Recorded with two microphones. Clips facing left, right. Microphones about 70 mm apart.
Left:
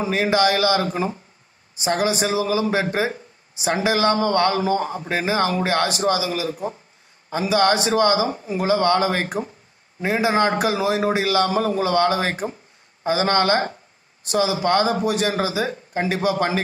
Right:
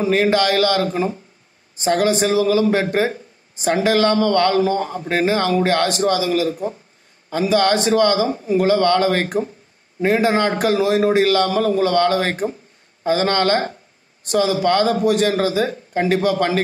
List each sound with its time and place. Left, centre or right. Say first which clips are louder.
0.0 s a man's voice: right 3 dB; centre